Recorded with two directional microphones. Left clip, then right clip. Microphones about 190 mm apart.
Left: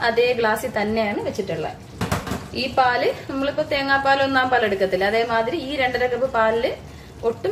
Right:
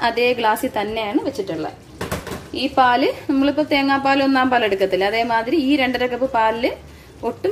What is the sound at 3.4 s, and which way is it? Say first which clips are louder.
A woman's voice: right 5 dB; 35° right (ahead or behind).